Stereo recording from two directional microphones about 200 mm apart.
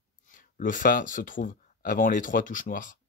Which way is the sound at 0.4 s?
40° left (ahead or behind).